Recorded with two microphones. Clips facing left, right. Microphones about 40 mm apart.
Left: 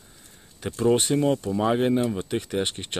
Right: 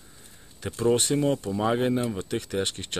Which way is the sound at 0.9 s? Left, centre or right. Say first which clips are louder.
Left 2 dB; centre.